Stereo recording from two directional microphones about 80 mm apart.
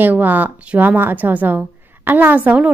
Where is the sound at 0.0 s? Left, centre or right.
Right.